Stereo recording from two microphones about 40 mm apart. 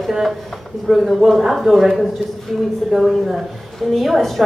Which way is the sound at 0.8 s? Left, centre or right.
Centre.